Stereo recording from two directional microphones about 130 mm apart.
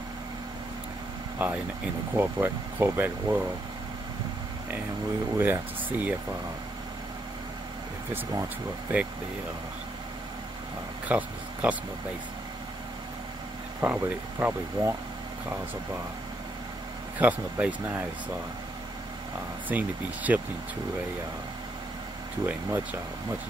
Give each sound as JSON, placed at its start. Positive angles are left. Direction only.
{"t": 1.4, "sound": "speech", "side_deg": -15}
{"t": 5.4, "sound": "speech", "side_deg": -15}
{"t": 8.1, "sound": "speech", "side_deg": -25}
{"t": 11.1, "sound": "speech", "side_deg": -10}
{"t": 13.7, "sound": "speech", "side_deg": -15}
{"t": 17.2, "sound": "speech", "side_deg": -10}
{"t": 19.7, "sound": "speech", "side_deg": -10}
{"t": 22.5, "sound": "speech", "side_deg": -10}